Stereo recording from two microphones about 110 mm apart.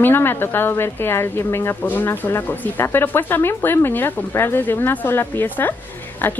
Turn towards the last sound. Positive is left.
turn(degrees=15)  # may be behind; listen again after turning